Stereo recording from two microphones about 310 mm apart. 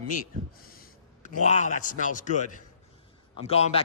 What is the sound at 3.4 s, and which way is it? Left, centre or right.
Speech, centre.